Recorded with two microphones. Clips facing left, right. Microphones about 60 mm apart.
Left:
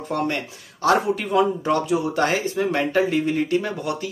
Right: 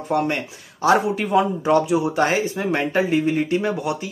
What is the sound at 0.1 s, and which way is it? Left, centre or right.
Speech, centre.